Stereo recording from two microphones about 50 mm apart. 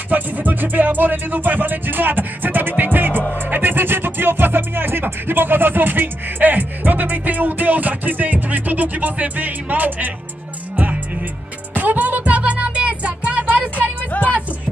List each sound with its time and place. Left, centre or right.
0.1 s speech: right
2.8 s music: right
3.4 s speech: right
11.7 s music: right
14.1 s music: left